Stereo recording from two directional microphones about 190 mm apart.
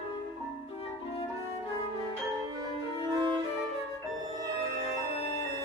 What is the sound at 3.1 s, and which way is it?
Violin, 20° right (ahead or behind).